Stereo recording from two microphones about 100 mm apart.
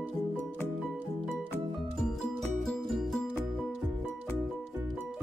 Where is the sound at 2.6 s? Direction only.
Centre (ahead or behind).